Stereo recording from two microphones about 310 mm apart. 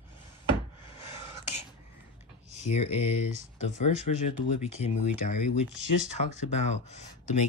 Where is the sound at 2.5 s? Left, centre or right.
Left.